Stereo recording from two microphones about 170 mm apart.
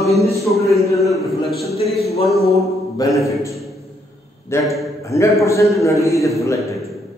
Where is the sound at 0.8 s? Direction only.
20° left (ahead or behind).